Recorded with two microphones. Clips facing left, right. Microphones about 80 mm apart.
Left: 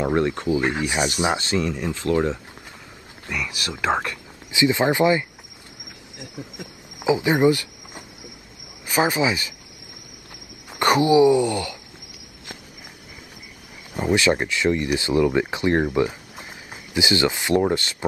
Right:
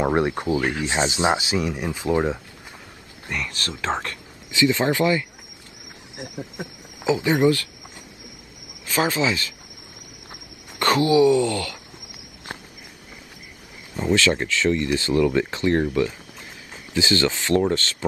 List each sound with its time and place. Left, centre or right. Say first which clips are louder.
0.0 s speech: even; right
0.6 s speech: left 1 dB; left
0.8 s speech: right 1 dB; right
1.4 s speech: left 1 dB; centre
3.3 s speech: left 1 dB; centre
6.1 s cricket: right 4 dB; right
7.0 s speech: left 1 dB; centre
10.7 s speech: left 2 dB; left
13.9 s speech: left 1 dB; centre